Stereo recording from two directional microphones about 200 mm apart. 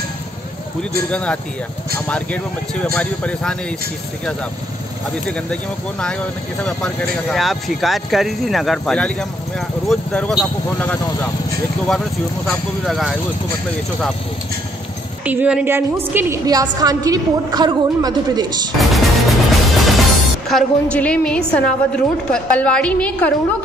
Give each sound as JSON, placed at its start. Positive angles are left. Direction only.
{"t": 1.1, "sound": "speech", "side_deg": 5}
{"t": 5.1, "sound": "speech", "side_deg": 5}
{"t": 12.4, "sound": "speech", "side_deg": 0}
{"t": 15.2, "sound": "a woman's voice", "side_deg": -5}
{"t": 18.8, "sound": "music", "side_deg": 0}
{"t": 19.9, "sound": "speech", "side_deg": 0}